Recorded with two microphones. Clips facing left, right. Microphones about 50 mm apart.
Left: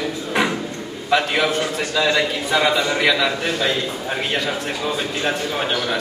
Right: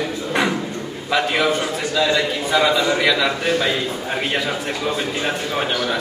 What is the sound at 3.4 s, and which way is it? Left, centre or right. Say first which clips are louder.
A man's voice: right 2 dB; centre.